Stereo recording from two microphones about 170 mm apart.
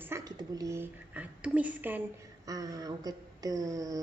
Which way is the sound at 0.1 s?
20° right (ahead or behind).